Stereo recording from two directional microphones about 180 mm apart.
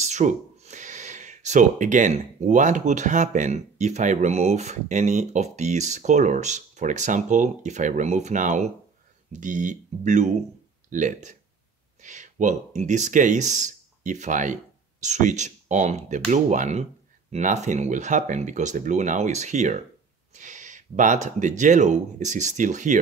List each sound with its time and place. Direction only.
0.0 s speech: 40° right (ahead or behind)